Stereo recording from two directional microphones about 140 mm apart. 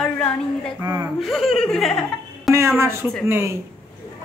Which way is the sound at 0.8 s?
25° right (ahead or behind).